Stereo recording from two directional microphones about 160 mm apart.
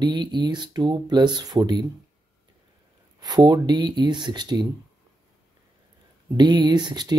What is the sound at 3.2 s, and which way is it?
Speech, 25° right (ahead or behind).